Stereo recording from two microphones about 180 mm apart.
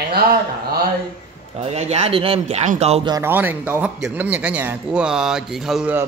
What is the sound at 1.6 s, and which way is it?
Speech, 35° right (ahead or behind).